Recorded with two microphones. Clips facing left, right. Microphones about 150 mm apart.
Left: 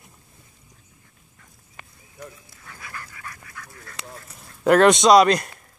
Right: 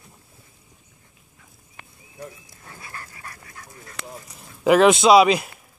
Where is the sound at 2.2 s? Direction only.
30° right (ahead or behind).